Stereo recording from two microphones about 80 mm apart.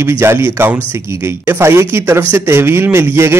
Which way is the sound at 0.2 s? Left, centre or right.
Right.